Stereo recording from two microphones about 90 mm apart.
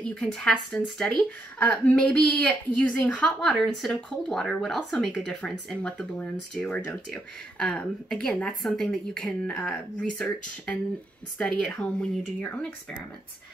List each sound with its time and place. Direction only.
0.0 s speech: 10° left (ahead or behind)
3.4 s speech: centre (ahead or behind); by 12.6 s 15° left (ahead or behind)